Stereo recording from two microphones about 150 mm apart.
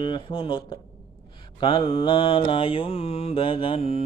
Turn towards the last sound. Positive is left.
turn(degrees=40)  # may be behind; listen again after turning